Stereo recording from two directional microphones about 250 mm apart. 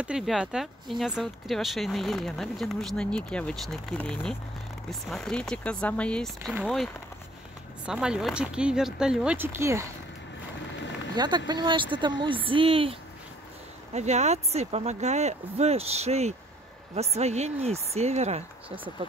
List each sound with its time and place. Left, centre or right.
0.0 s speech: centre
11.1 s speech: centre
13.9 s speech: right